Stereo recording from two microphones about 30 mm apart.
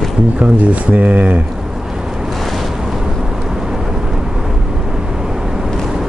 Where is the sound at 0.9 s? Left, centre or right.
Right.